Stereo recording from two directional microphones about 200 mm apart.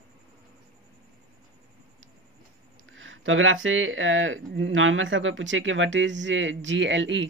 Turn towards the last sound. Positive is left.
turn(degrees=-65)  # may be behind; listen again after turning